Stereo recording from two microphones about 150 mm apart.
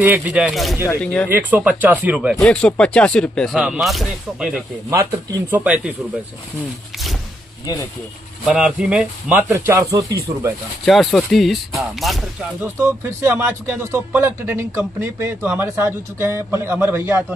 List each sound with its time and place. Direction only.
0.0 s speech: 10° right (ahead or behind); by 1.3 s 10° left (ahead or behind)
1.3 s speech: 10° right (ahead or behind)
4.8 s speech: 20° right (ahead or behind)
8.5 s speech: 5° right (ahead or behind); by 10.5 s 20° right (ahead or behind)
10.9 s speech: centre (ahead or behind)
13.2 s speech: 15° right (ahead or behind)